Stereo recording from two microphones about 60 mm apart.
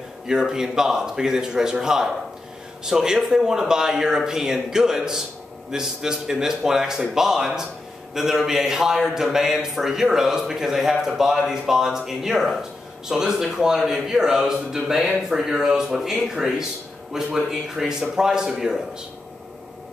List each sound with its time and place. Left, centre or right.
0.3 s a man's voice: centre